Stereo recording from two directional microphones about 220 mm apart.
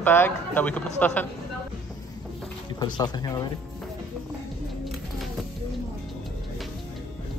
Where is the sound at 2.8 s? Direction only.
20° left (ahead or behind).